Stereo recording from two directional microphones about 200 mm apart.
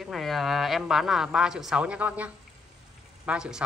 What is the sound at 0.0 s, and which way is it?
A woman's voice, centre (ahead or behind).